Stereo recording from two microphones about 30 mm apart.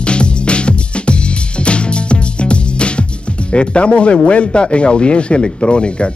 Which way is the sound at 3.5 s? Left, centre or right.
Left.